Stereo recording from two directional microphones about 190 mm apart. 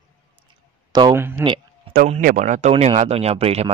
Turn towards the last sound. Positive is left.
turn(degrees=-35)  # may be behind; listen again after turning